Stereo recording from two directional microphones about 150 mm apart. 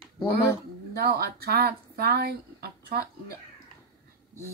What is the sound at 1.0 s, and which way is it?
Speech, 90° right.